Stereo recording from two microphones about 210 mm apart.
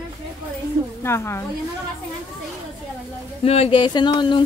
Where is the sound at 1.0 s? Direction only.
10° left (ahead or behind).